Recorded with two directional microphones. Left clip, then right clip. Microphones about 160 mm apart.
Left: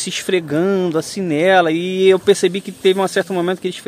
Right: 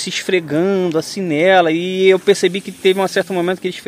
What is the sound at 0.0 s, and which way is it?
Speech, centre (ahead or behind).